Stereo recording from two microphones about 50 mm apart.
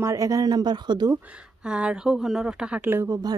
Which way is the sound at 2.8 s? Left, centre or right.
Right.